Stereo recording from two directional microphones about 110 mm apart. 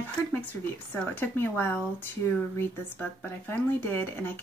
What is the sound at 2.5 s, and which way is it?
Speech, 20° left (ahead or behind).